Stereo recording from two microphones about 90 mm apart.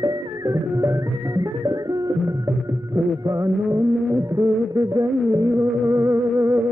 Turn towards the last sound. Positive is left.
turn(degrees=-30)  # may be behind; listen again after turning